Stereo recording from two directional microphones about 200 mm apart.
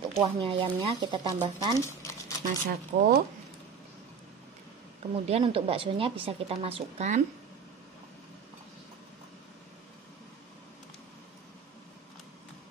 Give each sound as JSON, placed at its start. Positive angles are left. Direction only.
{"t": 0.2, "sound": "a woman's voice", "side_deg": -25}
{"t": 1.8, "sound": "a sound", "side_deg": 15}
{"t": 2.4, "sound": "speech", "side_deg": -45}
{"t": 5.1, "sound": "a woman's voice", "side_deg": -30}